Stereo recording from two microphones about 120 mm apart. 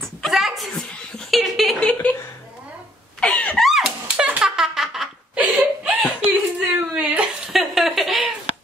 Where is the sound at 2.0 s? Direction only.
20° left (ahead or behind).